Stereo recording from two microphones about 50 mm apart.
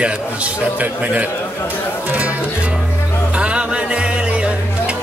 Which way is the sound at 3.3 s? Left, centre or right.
Right.